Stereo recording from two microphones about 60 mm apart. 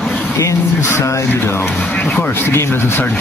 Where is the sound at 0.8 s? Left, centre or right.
Left.